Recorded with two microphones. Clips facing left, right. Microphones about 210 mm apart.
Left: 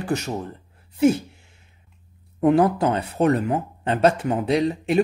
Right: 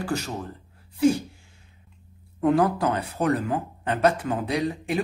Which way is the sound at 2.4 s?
25° left (ahead or behind).